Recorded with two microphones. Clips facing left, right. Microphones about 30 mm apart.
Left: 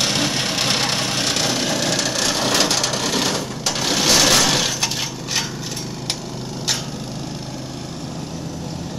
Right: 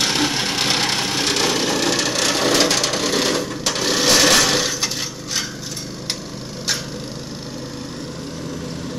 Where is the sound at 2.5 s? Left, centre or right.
Centre.